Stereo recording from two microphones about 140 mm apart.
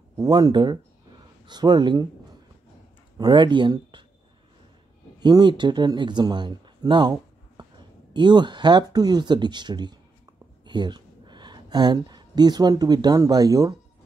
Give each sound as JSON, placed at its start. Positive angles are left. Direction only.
{"t": 0.2, "sound": "speech", "side_deg": -30}
{"t": 3.2, "sound": "speech", "side_deg": -35}
{"t": 5.2, "sound": "speech", "side_deg": -35}